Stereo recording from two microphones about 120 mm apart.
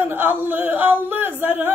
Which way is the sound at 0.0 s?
15° right (ahead or behind).